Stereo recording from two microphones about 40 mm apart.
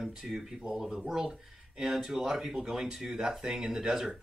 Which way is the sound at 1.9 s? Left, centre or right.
Centre.